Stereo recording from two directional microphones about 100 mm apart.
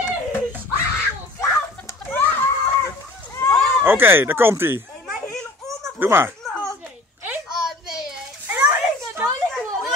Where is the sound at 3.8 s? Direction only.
25° right (ahead or behind).